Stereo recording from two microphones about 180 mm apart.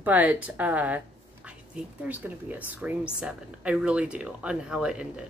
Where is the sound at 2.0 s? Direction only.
10° right (ahead or behind).